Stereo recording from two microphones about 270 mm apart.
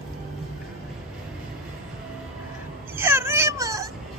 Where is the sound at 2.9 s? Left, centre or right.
Centre.